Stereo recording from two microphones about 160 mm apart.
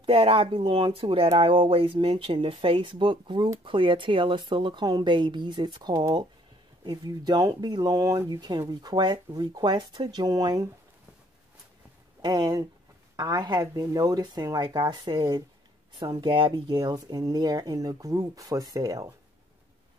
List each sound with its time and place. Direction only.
0.0 s speech: 35° right (ahead or behind)
12.2 s speech: 25° right (ahead or behind)